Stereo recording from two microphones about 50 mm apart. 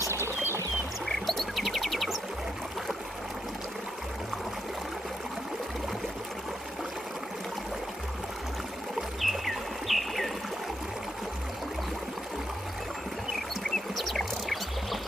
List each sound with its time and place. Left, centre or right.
0.0 s pour: left
1.0 s music: centre
9.2 s a sound: centre
13.9 s music: centre